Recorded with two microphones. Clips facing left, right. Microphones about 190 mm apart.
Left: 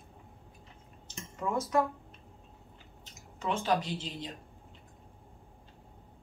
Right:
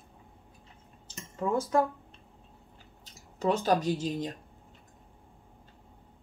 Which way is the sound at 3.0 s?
35° right (ahead or behind).